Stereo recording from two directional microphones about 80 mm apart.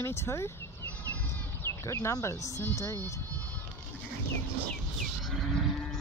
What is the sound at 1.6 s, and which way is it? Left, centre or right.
Speech, left.